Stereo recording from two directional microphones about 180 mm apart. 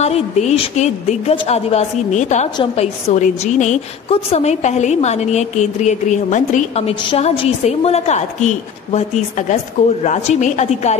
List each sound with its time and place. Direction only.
0.0 s a woman's voice: 35° left (ahead or behind)